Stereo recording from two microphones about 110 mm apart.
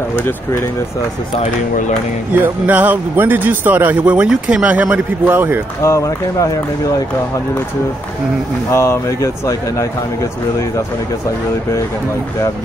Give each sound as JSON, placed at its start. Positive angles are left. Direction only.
{"t": 0.2, "sound": "speech", "side_deg": 25}
{"t": 2.4, "sound": "speech", "side_deg": -15}
{"t": 5.8, "sound": "speech", "side_deg": 30}
{"t": 8.7, "sound": "speech", "side_deg": 25}